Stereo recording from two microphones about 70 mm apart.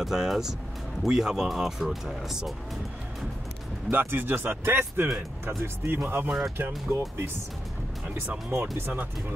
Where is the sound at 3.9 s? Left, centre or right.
Right.